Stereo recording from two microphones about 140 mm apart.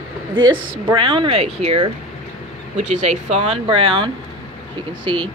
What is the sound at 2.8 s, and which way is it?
Speech, 55° right (ahead or behind).